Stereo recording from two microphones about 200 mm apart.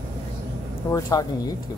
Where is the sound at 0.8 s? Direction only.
20° left (ahead or behind).